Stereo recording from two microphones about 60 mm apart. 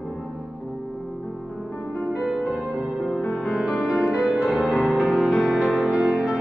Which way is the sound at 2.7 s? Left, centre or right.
Centre.